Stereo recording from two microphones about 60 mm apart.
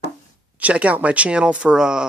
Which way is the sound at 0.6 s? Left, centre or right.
Right.